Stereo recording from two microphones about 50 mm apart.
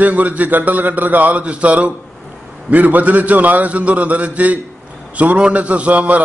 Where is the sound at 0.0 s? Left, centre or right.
Right.